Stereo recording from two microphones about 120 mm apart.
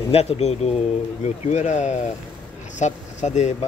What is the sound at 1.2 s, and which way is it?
Speech, 75° left (ahead or behind).